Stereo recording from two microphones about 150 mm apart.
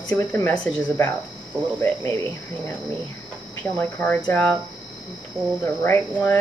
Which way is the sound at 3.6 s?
10° left (ahead or behind).